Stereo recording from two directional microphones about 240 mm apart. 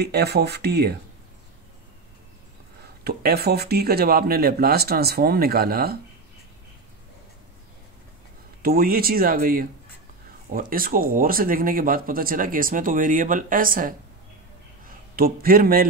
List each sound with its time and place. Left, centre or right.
0.0 s speech: right
3.0 s speech: right
8.6 s speech: right
15.1 s speech: right